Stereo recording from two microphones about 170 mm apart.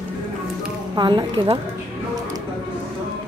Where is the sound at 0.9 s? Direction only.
25° right (ahead or behind).